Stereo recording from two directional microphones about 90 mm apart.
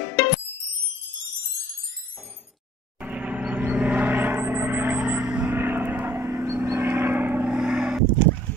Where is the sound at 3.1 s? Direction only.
15° right (ahead or behind).